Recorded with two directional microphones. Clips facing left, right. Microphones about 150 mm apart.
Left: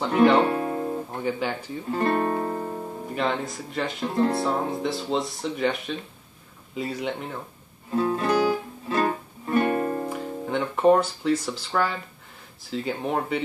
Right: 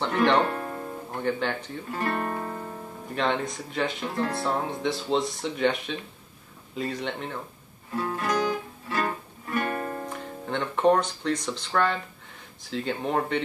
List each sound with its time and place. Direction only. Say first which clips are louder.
0.0 s speech: left 4 dB; 10° left (ahead or behind)
1.9 s guitar: left 6 dB; 25° left (ahead or behind)
3.2 s speech: even; 5° left (ahead or behind)
4.1 s speech: left 6 dB; 25° left (ahead or behind)
4.4 s speech: left 3 dB; centre (ahead or behind)
7.9 s music: left 5 dB; 25° left (ahead or behind)
10.0 s speech: left 5 dB; 5° left (ahead or behind)